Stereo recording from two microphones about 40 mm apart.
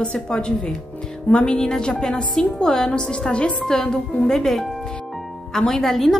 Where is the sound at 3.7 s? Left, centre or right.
Centre.